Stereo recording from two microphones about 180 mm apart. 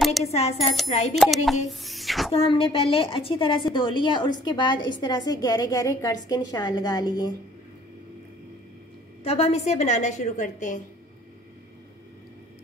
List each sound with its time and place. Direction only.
0.2 s a woman's voice: 35° left (ahead or behind)
1.1 s speech: centre (ahead or behind)
1.7 s a sound: centre (ahead or behind)
2.3 s a woman's voice: 30° left (ahead or behind)
9.2 s a woman's voice: 35° left (ahead or behind)